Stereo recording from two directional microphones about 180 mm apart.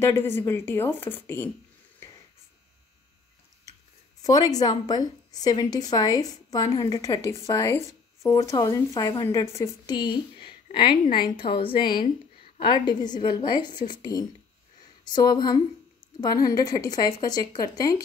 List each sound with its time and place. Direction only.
0.0 s a woman's voice: 15° left (ahead or behind)
4.2 s a woman's voice: 20° left (ahead or behind)